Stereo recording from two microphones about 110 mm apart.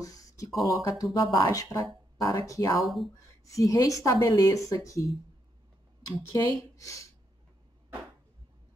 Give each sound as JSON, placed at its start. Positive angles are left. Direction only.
{"t": 0.0, "sound": "a sound", "side_deg": 30}
{"t": 0.7, "sound": "speech", "side_deg": 30}
{"t": 2.8, "sound": "speech", "side_deg": 0}
{"t": 3.4, "sound": "speech", "side_deg": 30}
{"t": 6.3, "sound": "speech", "side_deg": 30}